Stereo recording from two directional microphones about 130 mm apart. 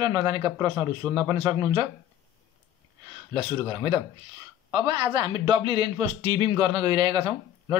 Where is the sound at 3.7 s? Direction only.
25° right (ahead or behind).